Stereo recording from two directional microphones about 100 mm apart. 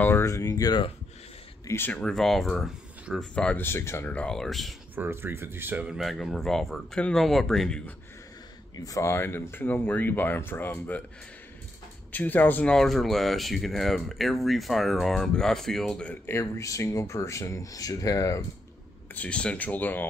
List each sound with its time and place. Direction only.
0.2 s speech: 35° left (ahead or behind)
1.7 s speech: 20° left (ahead or behind)
2.0 s speech: 5° left (ahead or behind)
3.5 s speech: 25° left (ahead or behind)
4.1 s speech: 10° left (ahead or behind)
4.9 s speech: 20° right (ahead or behind)
5.9 s speech: centre (ahead or behind)
8.7 s speech: 35° left (ahead or behind)
9.1 s speech: 20° left (ahead or behind)
12.1 s speech: 15° left (ahead or behind)
12.7 s speech: centre (ahead or behind)
16.3 s speech: 30° left (ahead or behind)
19.1 s speech: 10° left (ahead or behind)